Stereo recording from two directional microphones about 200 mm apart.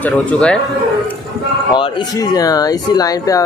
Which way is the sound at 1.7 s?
20° left (ahead or behind).